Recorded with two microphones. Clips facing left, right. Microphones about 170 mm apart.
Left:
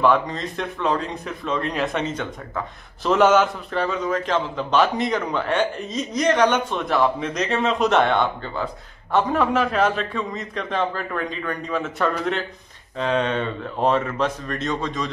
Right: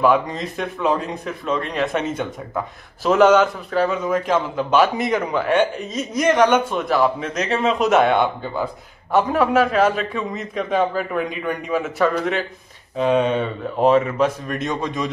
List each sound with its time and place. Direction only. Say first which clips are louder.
0.0 s a man's voice: right 2 dB; 10° right (ahead or behind)